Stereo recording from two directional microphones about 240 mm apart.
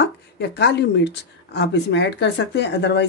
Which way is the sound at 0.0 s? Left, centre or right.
Left.